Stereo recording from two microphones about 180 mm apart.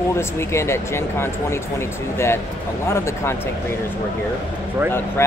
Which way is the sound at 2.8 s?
15° left (ahead or behind).